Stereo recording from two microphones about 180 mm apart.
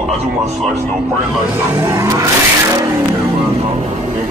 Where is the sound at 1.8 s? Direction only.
15° right (ahead or behind).